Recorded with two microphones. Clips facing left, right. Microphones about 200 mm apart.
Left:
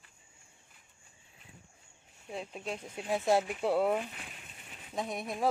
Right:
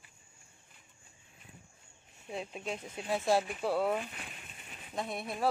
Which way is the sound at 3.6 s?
20° left (ahead or behind).